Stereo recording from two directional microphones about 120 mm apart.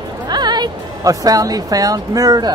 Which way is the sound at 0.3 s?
35° right (ahead or behind).